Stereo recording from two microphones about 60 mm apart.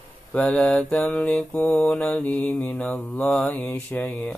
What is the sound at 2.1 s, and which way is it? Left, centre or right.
Mantra, left.